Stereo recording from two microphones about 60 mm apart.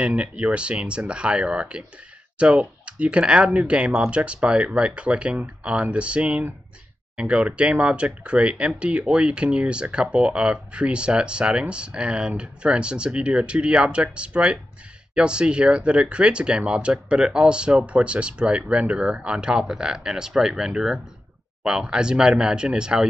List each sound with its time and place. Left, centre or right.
0.0 s speech: centre